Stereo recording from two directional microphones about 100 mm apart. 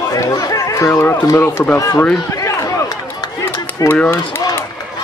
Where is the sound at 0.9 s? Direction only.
25° left (ahead or behind).